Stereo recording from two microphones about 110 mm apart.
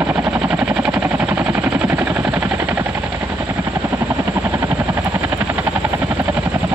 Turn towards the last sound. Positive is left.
turn(degrees=-15)  # may be behind; listen again after turning